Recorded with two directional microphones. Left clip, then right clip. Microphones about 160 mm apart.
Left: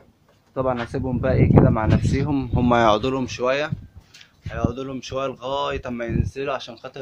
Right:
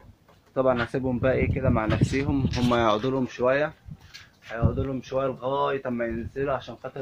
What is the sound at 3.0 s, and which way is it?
Speech, 30° left (ahead or behind).